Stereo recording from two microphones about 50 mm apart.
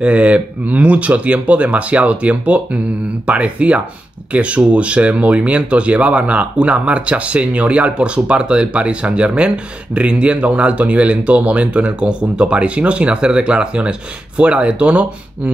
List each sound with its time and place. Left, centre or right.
0.0 s speech: right